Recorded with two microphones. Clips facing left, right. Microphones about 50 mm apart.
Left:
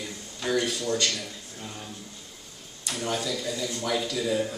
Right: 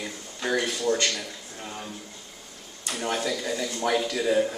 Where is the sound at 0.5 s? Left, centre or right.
Right.